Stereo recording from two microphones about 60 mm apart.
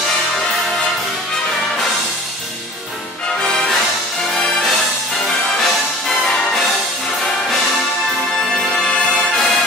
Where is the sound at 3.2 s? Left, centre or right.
Centre.